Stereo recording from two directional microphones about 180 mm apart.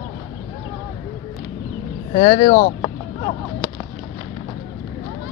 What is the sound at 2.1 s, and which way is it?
Speech, 40° left (ahead or behind).